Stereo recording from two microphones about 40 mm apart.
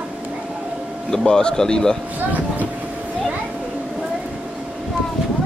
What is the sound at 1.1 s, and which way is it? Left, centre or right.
Speech, centre.